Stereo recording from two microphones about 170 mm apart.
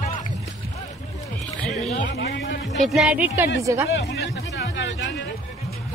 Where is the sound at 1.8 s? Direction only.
40° left (ahead or behind).